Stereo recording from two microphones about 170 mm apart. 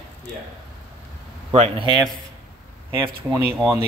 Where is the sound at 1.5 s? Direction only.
40° right (ahead or behind).